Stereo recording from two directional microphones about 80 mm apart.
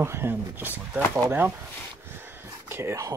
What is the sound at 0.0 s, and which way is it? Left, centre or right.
Speech, right.